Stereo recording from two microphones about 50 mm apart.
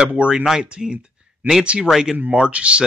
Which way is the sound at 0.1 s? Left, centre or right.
Right.